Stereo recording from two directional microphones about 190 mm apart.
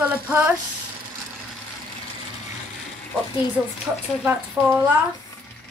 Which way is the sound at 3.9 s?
5° right (ahead or behind).